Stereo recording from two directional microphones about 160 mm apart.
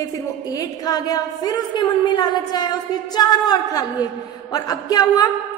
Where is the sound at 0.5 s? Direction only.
25° left (ahead or behind).